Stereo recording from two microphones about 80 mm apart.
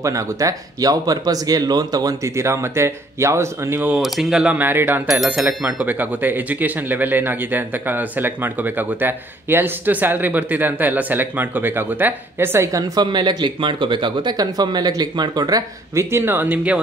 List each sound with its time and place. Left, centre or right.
0.0 s speech: right
2.2 s speech: right
4.0 s speech: centre
4.6 s speech: right
12.6 s speech: right
13.0 s speech: right
14.3 s speech: right
15.9 s speech: right